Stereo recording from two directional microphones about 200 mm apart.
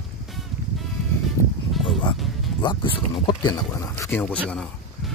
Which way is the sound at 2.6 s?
25° left (ahead or behind).